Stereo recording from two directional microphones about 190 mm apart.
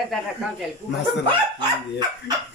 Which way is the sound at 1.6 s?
25° right (ahead or behind).